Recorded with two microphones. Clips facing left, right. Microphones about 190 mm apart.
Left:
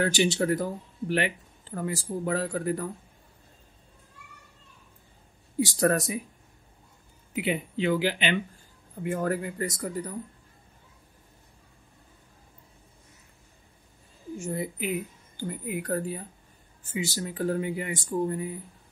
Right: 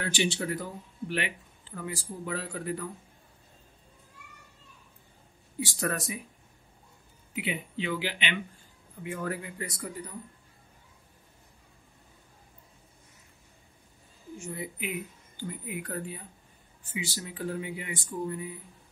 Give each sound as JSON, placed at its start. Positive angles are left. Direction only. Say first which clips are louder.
{"t": 0.0, "sound": "speech", "louder": "left 6 dB", "side_deg": 45}
{"t": 5.6, "sound": "speech", "louder": "left 8 dB", "side_deg": 40}
{"t": 7.3, "sound": "speech", "louder": "left 5 dB", "side_deg": 45}
{"t": 14.4, "sound": "speech", "louder": "left 6 dB", "side_deg": 40}